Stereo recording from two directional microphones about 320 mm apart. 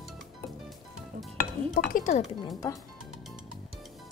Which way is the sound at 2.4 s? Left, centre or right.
Centre.